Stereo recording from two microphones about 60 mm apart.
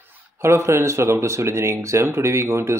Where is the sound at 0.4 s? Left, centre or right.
Right.